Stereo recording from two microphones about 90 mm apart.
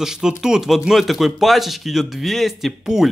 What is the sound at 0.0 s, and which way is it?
Speech, 5° right (ahead or behind).